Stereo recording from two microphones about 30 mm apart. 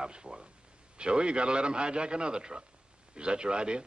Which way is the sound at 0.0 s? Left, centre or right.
Right.